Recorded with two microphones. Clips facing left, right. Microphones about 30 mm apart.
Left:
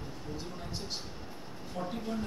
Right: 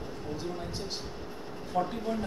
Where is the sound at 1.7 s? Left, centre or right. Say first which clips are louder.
Right 6 dB; centre.